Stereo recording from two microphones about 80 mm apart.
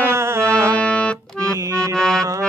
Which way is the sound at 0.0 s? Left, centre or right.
Right.